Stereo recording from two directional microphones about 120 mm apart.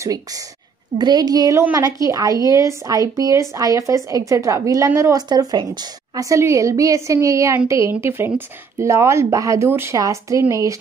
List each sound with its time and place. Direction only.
0.9 s a woman's voice: 35° right (ahead or behind)